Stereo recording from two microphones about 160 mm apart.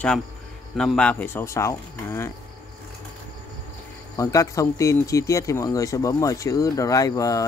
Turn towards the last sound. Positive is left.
turn(degrees=20)  # may be behind; listen again after turning